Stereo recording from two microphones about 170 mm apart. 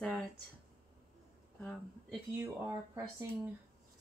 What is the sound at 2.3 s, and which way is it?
Speech, 20° right (ahead or behind).